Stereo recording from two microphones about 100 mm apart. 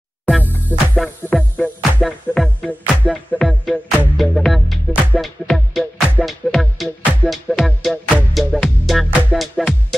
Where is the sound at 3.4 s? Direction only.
Centre (ahead or behind).